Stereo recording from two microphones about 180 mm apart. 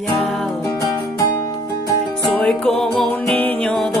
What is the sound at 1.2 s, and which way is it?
Music, 20° left (ahead or behind).